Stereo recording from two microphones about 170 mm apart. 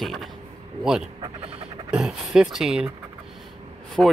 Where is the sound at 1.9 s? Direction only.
5° right (ahead or behind).